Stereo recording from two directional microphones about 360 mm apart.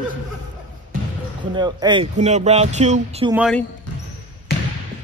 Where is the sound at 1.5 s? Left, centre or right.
Centre.